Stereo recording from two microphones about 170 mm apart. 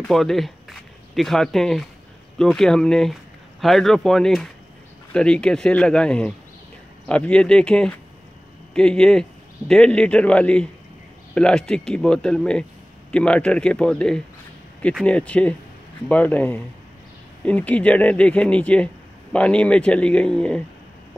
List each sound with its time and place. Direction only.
0.1 s speech: centre (ahead or behind)